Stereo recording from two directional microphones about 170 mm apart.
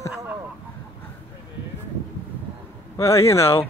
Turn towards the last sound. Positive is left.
turn(degrees=15)  # may be behind; listen again after turning